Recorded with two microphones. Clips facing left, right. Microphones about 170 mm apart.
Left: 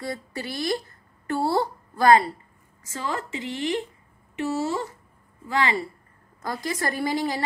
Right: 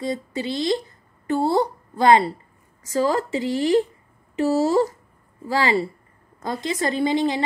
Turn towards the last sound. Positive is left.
turn(degrees=-20)  # may be behind; listen again after turning